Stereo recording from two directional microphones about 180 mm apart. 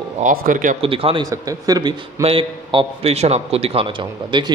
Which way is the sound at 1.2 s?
20° right (ahead or behind).